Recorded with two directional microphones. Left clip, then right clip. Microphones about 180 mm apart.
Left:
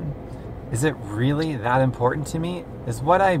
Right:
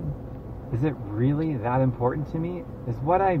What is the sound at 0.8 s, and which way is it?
Speech, 20° left (ahead or behind).